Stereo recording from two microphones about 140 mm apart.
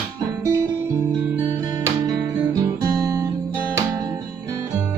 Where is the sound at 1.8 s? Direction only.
25° right (ahead or behind).